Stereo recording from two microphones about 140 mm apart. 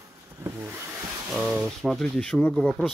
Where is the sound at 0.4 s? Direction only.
20° right (ahead or behind).